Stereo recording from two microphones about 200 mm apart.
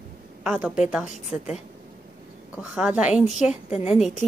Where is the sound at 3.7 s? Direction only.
35° left (ahead or behind).